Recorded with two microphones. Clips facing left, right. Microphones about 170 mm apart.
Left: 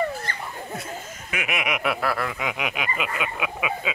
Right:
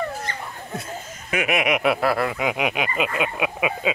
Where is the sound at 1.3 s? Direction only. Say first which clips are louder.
Right 7 dB; 40° right (ahead or behind).